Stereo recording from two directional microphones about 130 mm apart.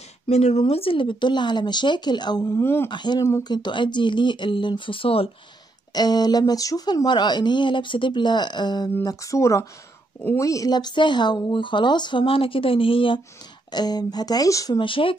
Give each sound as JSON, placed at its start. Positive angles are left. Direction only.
{"t": 0.3, "sound": "speech", "side_deg": 55}
{"t": 2.5, "sound": "speech", "side_deg": 15}
{"t": 2.9, "sound": "speech", "side_deg": 35}
{"t": 5.9, "sound": "speech", "side_deg": 30}
{"t": 13.7, "sound": "speech", "side_deg": 30}
{"t": 14.8, "sound": "speech", "side_deg": 40}